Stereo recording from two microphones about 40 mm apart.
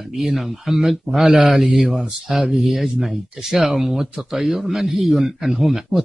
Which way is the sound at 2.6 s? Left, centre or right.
Centre.